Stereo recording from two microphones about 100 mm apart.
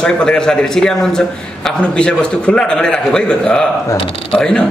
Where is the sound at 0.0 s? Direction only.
10° left (ahead or behind).